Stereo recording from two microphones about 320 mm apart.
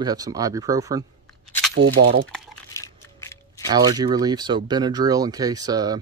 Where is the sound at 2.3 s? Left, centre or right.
Centre.